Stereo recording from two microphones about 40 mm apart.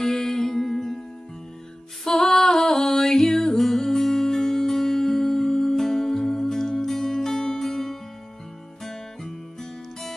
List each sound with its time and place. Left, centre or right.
0.0 s music: centre
2.0 s music: centre